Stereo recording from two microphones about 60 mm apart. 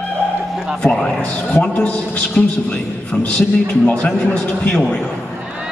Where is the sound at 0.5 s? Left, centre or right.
Centre.